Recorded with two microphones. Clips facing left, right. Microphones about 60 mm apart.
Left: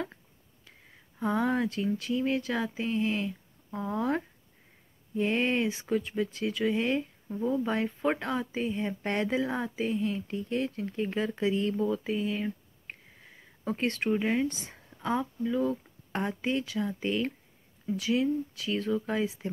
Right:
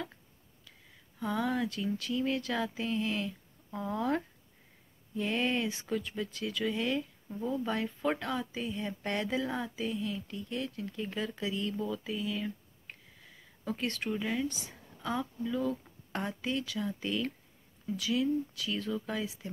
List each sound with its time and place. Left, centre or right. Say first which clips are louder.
1.2 s speech: left 4 dB; left
7.2 s speech: left 5 dB; centre